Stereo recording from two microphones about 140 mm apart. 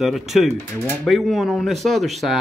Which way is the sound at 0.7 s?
15° left (ahead or behind).